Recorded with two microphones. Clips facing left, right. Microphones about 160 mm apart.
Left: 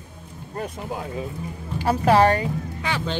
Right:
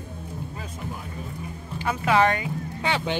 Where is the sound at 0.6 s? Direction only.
80° left.